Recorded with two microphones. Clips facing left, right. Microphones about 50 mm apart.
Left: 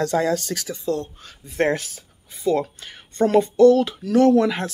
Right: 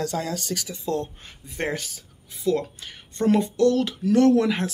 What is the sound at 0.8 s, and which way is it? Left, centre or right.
Speech, right.